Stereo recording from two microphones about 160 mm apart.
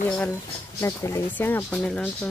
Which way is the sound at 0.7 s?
20° left (ahead or behind).